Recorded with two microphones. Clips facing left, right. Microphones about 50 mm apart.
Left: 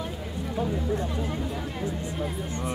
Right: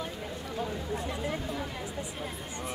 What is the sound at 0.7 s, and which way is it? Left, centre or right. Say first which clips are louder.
Speech: left 6 dB; centre.